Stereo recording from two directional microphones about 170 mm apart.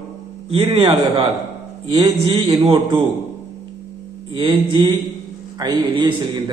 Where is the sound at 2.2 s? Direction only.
25° right (ahead or behind).